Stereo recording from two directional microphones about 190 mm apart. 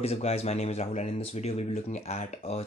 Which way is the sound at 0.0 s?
35° left (ahead or behind).